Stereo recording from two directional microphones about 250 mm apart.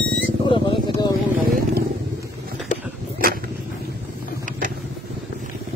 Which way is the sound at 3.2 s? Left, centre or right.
Right.